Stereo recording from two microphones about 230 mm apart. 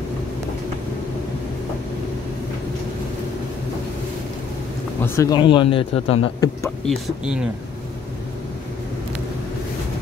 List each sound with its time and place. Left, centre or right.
5.0 s a man's voice: centre